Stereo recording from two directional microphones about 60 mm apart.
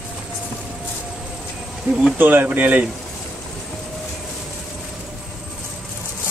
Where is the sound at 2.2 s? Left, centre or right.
Right.